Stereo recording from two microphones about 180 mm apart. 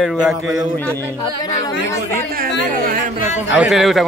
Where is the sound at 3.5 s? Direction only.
5° right (ahead or behind).